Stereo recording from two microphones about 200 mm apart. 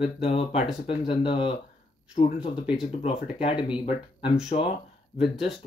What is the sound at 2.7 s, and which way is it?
Speech, 30° left (ahead or behind).